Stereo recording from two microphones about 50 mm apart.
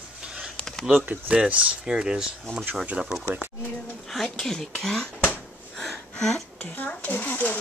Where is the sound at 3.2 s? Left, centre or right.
Right.